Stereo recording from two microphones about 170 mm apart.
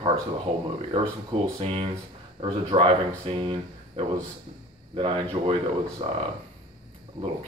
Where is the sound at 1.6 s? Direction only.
35° right (ahead or behind).